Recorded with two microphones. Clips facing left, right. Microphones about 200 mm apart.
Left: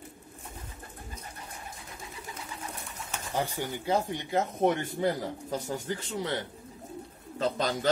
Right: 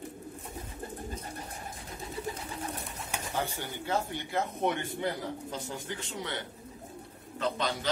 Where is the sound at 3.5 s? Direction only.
15° left (ahead or behind).